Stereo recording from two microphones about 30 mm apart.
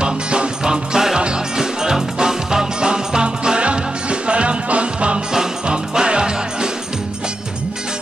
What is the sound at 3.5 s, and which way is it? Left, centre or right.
Music, right.